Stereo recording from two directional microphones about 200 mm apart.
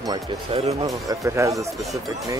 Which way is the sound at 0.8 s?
15° right (ahead or behind).